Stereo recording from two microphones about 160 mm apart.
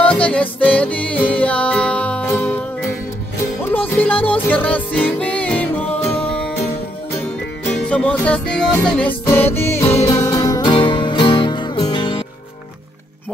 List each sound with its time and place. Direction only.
0.0 s music: 10° left (ahead or behind)
3.6 s music: 10° left (ahead or behind)
7.7 s music: 5° left (ahead or behind); by 12.3 s 30° left (ahead or behind)